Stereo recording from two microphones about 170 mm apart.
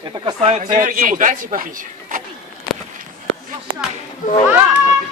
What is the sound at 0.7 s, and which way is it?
Speech, 55° right (ahead or behind).